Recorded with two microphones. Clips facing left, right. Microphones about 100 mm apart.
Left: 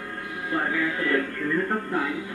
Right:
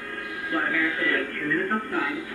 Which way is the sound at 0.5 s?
15° left (ahead or behind).